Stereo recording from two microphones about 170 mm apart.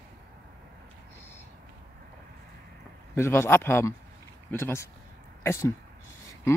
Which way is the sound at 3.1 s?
15° left (ahead or behind).